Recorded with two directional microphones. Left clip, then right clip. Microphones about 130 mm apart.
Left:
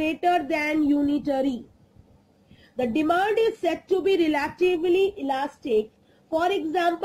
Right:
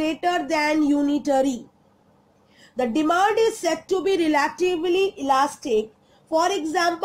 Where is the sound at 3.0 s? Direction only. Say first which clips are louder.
Right 3 dB; 35° right (ahead or behind).